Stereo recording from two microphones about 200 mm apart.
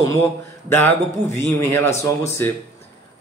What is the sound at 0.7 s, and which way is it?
A man's voice, 10° left (ahead or behind).